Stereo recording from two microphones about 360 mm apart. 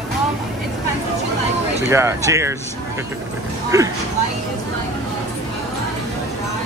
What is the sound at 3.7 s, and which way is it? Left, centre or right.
Speech, centre.